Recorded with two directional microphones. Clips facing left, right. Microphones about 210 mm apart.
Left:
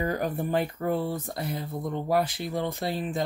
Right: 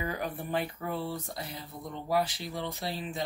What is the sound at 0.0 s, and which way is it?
Speech, 45° left (ahead or behind).